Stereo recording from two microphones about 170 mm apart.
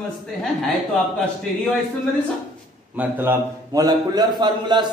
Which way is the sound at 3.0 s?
10° right (ahead or behind).